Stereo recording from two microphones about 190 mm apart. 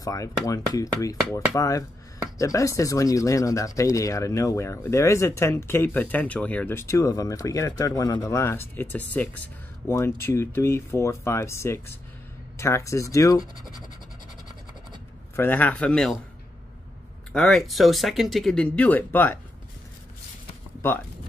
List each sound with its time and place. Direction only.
0.0 s speech: 20° left (ahead or behind)
15.3 s speech: 10° left (ahead or behind)
17.3 s speech: centre (ahead or behind)